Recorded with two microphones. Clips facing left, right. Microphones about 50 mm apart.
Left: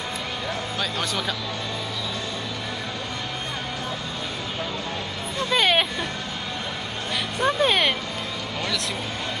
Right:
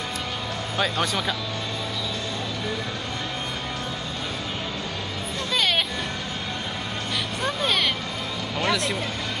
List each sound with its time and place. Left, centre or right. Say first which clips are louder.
0.7 s speech: right 6 dB; centre
5.5 s music: left 3 dB; centre
7.4 s vehicle: left 4 dB; centre